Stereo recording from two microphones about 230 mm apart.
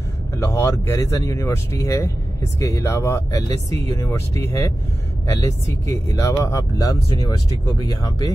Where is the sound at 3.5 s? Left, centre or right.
Right.